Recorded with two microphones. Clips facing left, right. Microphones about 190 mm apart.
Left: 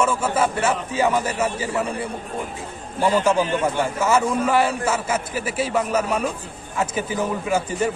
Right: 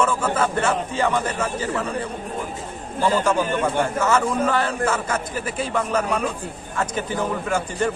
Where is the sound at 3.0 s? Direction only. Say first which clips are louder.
Left 1 dB; 10° left (ahead or behind).